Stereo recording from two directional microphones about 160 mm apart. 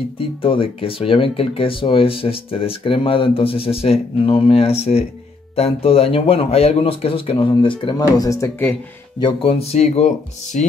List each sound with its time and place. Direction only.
0.2 s speech: 35° left (ahead or behind); by 8.7 s 15° left (ahead or behind)
9.2 s speech: 35° left (ahead or behind)